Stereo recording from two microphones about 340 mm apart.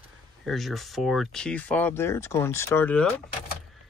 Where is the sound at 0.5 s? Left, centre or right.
Centre.